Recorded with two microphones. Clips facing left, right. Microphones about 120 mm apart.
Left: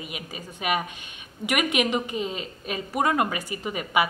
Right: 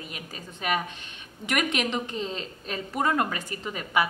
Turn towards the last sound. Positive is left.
turn(degrees=10)  # may be behind; listen again after turning